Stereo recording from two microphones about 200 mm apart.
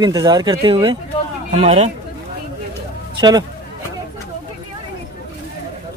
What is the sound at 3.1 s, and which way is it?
Speech, 20° right (ahead or behind).